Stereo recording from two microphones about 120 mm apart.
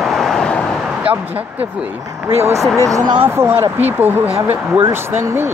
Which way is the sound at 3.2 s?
15° right (ahead or behind).